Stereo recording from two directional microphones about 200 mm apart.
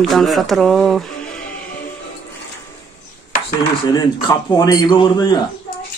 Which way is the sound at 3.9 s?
20° left (ahead or behind).